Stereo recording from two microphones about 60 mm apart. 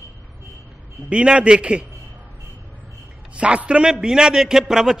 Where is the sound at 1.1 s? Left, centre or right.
Centre.